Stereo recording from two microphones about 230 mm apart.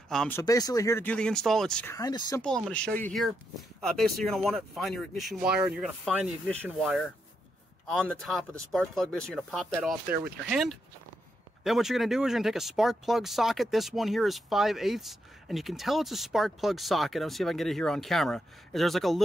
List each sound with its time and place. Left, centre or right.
0.1 s speech: centre
0.4 s speech: centre
2.0 s speech: centre
2.4 s speech: centre
8.2 s speech: centre
10.0 s speech: right
10.5 s speech: centre